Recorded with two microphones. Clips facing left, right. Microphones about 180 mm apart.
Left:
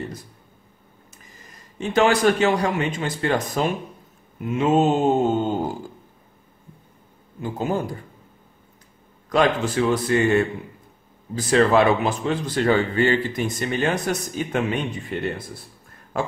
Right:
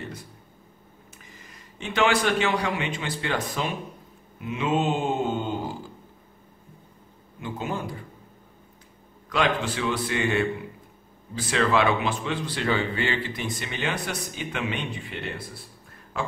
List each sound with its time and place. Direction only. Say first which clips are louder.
1.8 s speech: left 5 dB; 40° left (ahead or behind)
7.3 s a man's voice: left 6 dB; 40° left (ahead or behind)
9.3 s speech: left 5 dB; 40° left (ahead or behind)